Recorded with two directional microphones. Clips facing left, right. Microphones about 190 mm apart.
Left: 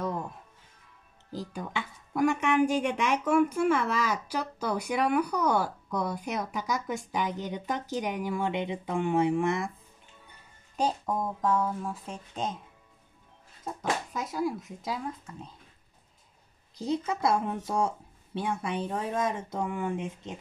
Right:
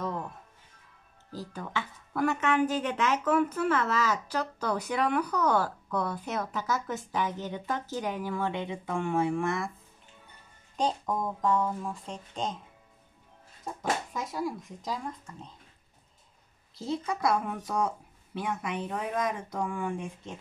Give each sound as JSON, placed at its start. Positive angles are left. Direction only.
{"t": 1.3, "sound": "speech", "side_deg": 15}
{"t": 10.8, "sound": "speech", "side_deg": 10}
{"t": 14.1, "sound": "speech", "side_deg": 0}
{"t": 16.7, "sound": "speech", "side_deg": 15}